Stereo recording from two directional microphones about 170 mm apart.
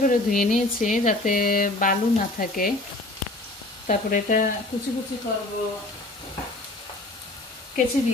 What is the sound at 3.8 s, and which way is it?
Frying, 50° left (ahead or behind).